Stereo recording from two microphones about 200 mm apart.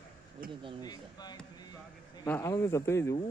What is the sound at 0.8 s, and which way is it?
Speech, 20° left (ahead or behind).